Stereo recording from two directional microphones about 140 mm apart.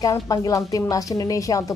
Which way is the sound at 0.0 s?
25° left (ahead or behind).